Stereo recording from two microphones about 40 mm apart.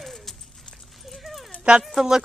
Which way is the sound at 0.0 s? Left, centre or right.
Centre.